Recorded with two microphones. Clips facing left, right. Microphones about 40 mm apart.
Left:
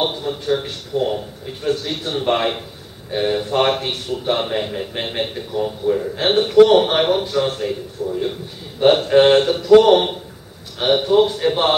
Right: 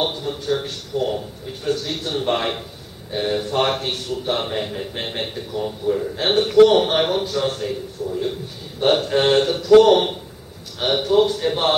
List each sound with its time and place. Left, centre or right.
0.0 s a man's voice: centre